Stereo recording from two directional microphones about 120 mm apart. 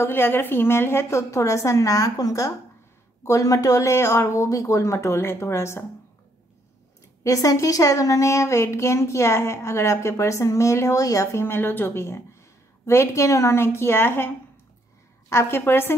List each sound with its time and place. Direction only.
0.0 s a woman's voice: 20° left (ahead or behind)
7.2 s a woman's voice: 30° left (ahead or behind)